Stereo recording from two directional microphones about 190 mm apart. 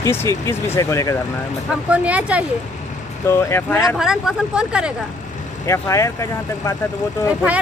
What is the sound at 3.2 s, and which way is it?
Speech, 10° left (ahead or behind).